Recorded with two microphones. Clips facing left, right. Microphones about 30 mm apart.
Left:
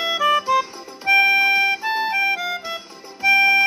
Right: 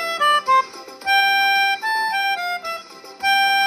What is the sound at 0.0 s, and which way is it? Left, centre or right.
Music, right.